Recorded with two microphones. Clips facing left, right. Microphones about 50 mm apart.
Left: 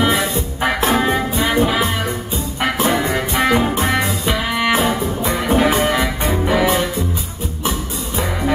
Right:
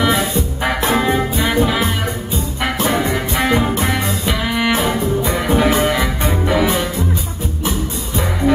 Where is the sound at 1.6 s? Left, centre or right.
Centre.